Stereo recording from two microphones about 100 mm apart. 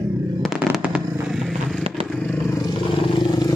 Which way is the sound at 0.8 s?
10° right (ahead or behind).